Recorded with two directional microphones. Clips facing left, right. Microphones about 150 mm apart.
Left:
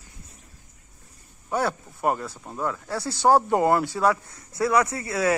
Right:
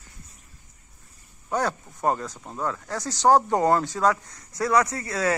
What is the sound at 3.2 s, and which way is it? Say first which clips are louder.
Speech: even; 10° left (ahead or behind).